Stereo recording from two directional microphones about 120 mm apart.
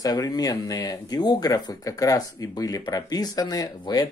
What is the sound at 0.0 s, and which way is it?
Speech, 30° left (ahead or behind).